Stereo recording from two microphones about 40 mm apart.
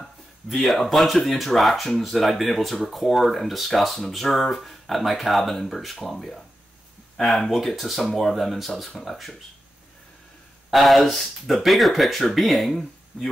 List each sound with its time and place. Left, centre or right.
0.0 s speech: centre
7.5 s speech: centre
10.7 s speech: centre
13.1 s speech: left